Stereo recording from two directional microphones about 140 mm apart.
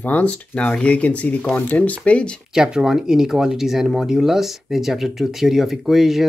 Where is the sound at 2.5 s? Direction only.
5° right (ahead or behind).